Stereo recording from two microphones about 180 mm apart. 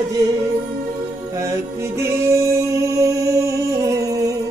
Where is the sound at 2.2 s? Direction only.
15° right (ahead or behind).